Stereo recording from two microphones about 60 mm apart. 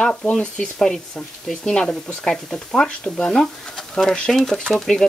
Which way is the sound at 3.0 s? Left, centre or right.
Left.